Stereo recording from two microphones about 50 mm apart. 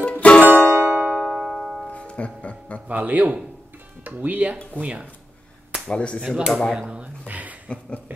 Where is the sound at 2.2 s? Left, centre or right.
Left.